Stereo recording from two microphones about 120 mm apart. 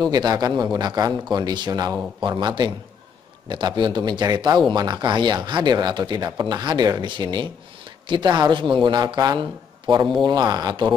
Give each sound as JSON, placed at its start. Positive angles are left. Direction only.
{"t": 0.0, "sound": "speech", "side_deg": -35}